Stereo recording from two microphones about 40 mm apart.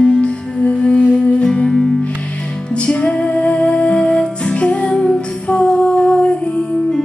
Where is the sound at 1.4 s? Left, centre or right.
Centre.